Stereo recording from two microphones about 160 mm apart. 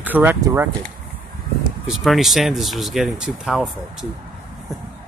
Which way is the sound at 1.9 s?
Centre (ahead or behind).